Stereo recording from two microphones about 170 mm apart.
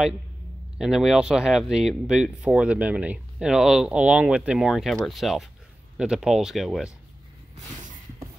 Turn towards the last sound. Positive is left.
turn(degrees=0)  # may be behind; listen again after turning